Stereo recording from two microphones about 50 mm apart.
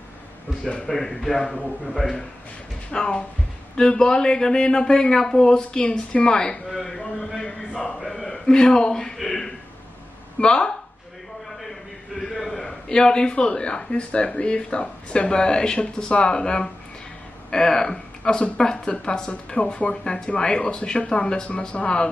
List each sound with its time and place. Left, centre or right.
0.8 s a man's voice: centre
2.9 s a man's voice: centre
6.7 s a sound: centre
10.4 s a man's voice: centre
11.6 s a sound: centre
12.8 s a man's voice: centre
21.5 s speech: left